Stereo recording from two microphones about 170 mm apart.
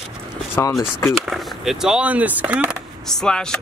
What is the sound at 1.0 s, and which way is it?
Speech, centre (ahead or behind).